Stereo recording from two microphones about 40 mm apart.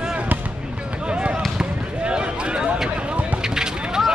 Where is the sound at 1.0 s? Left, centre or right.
Right.